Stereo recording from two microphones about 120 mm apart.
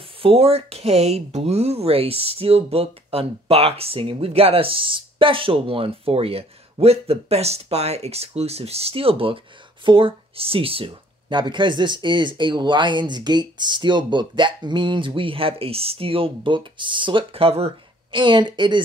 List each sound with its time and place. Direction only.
0.2 s speech: 55° right (ahead or behind)
18.1 s speech: 40° right (ahead or behind)